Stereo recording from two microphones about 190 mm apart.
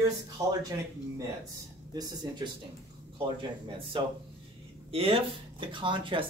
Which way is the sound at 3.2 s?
25° right (ahead or behind).